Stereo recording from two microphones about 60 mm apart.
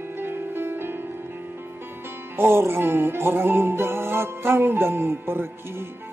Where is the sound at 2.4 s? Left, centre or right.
Right.